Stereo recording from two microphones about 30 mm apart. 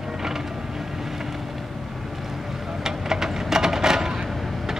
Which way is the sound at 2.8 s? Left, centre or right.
Centre.